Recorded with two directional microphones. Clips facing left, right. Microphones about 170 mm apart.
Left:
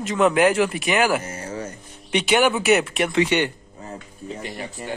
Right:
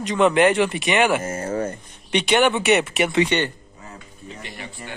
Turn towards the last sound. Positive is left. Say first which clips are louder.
# even
turn(degrees=5)  # may be behind; listen again after turning